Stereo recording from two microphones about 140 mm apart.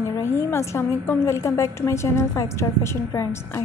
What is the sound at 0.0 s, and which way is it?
A woman's voice, 20° left (ahead or behind).